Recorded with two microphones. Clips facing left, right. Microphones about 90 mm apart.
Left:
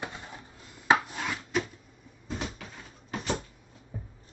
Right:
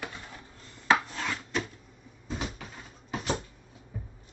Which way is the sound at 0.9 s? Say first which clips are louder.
Left 1 dB; 10° left (ahead or behind).